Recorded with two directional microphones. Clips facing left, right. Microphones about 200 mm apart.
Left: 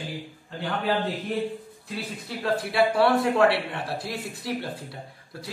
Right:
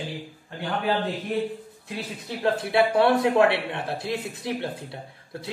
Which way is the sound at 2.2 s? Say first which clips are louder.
Right 2 dB; 20° right (ahead or behind).